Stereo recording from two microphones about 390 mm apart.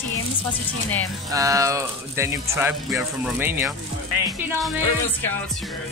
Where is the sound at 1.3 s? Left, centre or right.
Centre.